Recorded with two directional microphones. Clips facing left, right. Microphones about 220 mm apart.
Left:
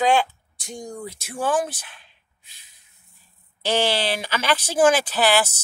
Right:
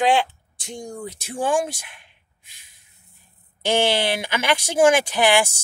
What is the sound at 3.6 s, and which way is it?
Speech, 15° right (ahead or behind).